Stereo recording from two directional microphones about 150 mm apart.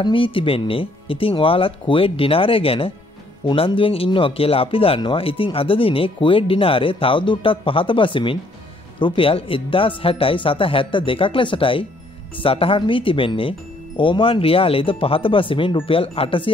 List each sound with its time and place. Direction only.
0.0 s speech: 35° left (ahead or behind)